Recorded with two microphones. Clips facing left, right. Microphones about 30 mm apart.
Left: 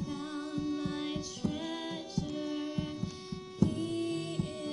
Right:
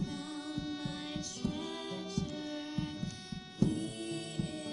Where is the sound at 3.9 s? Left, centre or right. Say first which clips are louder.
Left 5 dB; centre.